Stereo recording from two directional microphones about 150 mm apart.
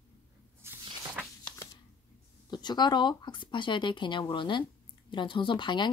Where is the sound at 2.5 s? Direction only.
30° left (ahead or behind).